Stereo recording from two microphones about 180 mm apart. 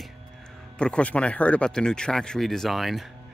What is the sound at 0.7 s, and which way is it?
Speech, 5° left (ahead or behind).